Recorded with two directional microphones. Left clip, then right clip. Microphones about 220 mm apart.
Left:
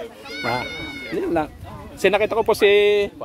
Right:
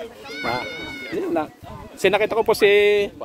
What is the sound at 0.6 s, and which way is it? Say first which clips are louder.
Speech: left 1 dB; 50° left (ahead or behind).